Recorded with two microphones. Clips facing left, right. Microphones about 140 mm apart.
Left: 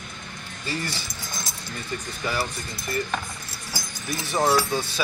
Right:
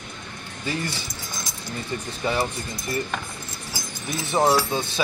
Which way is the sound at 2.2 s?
25° right (ahead or behind).